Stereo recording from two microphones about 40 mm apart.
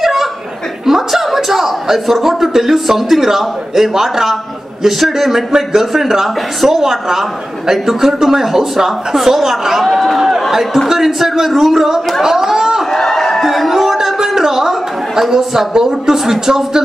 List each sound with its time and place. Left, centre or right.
0.0 s chuckle: centre
0.8 s a man's voice: centre
12.9 s a sound: centre
13.5 s chatter: centre